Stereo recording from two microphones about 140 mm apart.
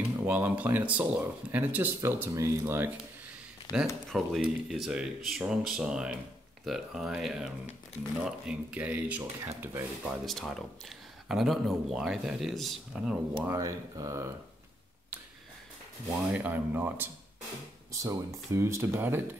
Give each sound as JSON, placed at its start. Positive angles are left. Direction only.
{"t": 0.2, "sound": "speech", "side_deg": -15}
{"t": 3.7, "sound": "speech", "side_deg": 0}
{"t": 9.4, "sound": "speech", "side_deg": -25}
{"t": 10.0, "sound": "speech", "side_deg": 0}
{"t": 13.4, "sound": "speech", "side_deg": -20}
{"t": 16.3, "sound": "speech", "side_deg": -10}